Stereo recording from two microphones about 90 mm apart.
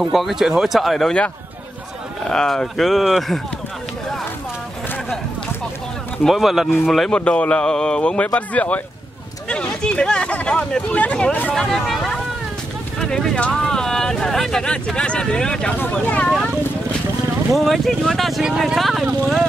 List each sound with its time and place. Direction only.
0.0 s speech: centre (ahead or behind)
2.2 s speech: 5° left (ahead or behind)
6.2 s speech: centre (ahead or behind)
7.2 s speech: 15° left (ahead or behind)
11.5 s speech: centre (ahead or behind)
16.3 s speech: 5° left (ahead or behind)